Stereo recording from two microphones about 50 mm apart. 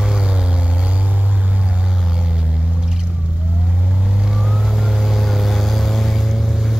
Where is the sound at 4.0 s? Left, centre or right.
Centre.